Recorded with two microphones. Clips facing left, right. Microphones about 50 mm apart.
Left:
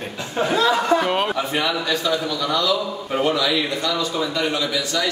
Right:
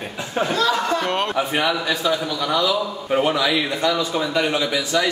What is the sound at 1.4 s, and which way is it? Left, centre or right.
A man's voice, centre.